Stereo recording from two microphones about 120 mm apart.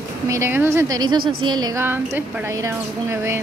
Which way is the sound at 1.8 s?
15° right (ahead or behind).